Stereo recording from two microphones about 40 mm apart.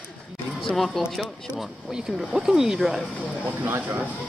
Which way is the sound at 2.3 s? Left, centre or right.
Centre.